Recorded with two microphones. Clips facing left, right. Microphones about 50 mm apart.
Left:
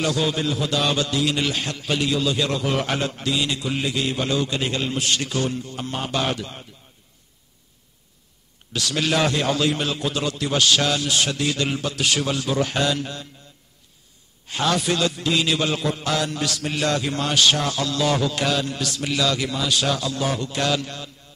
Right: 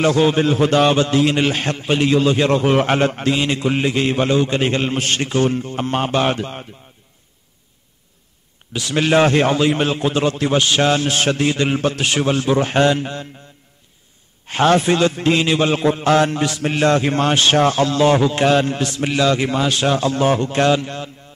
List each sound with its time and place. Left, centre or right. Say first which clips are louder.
0.0 s a man's voice: right 8 dB; right
8.7 s a man's voice: right 6 dB; right
14.4 s a man's voice: right 8 dB; right